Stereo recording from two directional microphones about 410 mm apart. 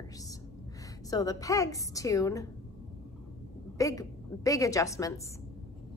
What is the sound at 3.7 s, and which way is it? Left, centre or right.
A woman's voice, centre.